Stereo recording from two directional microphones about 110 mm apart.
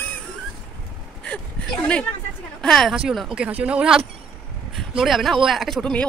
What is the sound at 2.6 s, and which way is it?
A woman's voice, 5° left (ahead or behind).